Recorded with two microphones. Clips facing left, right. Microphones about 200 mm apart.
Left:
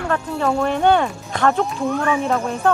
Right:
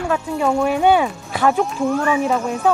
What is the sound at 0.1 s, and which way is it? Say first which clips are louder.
Speech: right 1 dB; 10° right (ahead or behind).